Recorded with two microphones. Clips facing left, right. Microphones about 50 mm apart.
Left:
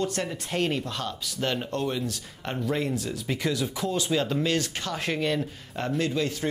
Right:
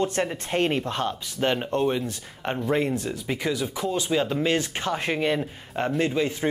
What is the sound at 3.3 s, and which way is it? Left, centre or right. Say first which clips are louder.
Speech: right 1 dB; centre.